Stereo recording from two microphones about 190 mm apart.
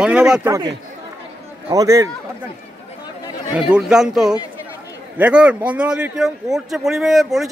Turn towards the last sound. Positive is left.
turn(degrees=0)  # may be behind; listen again after turning